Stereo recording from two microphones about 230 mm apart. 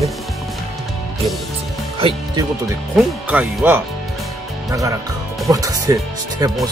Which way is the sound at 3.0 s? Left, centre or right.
Centre.